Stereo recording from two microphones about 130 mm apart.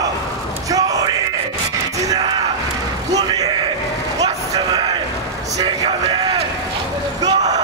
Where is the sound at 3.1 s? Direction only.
30° right (ahead or behind).